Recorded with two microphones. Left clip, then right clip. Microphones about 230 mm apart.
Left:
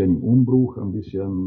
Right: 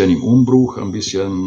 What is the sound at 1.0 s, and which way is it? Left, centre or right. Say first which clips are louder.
Speech: right 10 dB; centre.